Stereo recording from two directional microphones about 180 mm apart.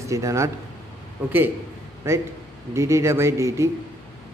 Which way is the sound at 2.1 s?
15° right (ahead or behind).